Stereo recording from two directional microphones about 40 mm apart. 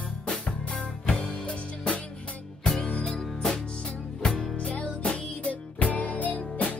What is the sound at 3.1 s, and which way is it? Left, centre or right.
Music, centre.